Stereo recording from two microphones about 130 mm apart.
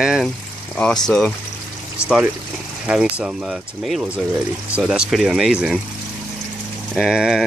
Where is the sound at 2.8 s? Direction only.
5° right (ahead or behind).